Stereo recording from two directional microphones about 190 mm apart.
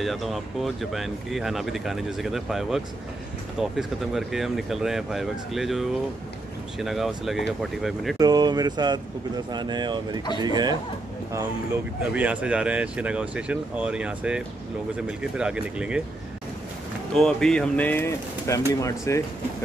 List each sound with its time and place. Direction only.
0.0 s speech: centre (ahead or behind)
8.2 s speech: 20° right (ahead or behind)
11.3 s speech: 10° right (ahead or behind)
17.1 s speech: 5° left (ahead or behind)